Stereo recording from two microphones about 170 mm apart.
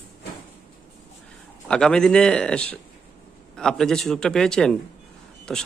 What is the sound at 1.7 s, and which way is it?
Speech, 5° left (ahead or behind).